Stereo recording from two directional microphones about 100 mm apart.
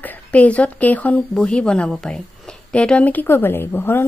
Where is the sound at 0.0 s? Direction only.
15° left (ahead or behind).